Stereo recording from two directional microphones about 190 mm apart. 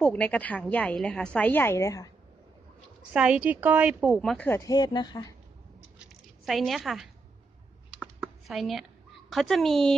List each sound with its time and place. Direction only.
0.0 s a woman's voice: 5° left (ahead or behind)
3.1 s a woman's voice: 5° right (ahead or behind)
4.5 s speech: 20° left (ahead or behind)
5.9 s a sound: centre (ahead or behind)
7.9 s computer keyboard: 5° right (ahead or behind)
9.3 s a woman's voice: centre (ahead or behind)